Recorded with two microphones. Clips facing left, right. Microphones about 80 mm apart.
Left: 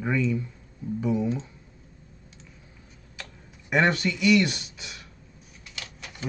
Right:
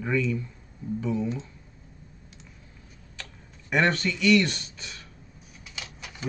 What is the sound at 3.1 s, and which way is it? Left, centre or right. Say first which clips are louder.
Computer keyboard: left 1 dB; centre.